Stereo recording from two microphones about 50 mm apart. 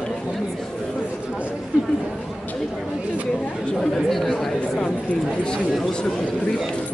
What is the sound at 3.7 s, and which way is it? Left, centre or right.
Speech, centre.